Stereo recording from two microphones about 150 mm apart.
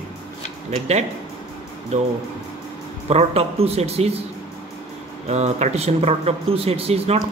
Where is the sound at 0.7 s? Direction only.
45° right (ahead or behind).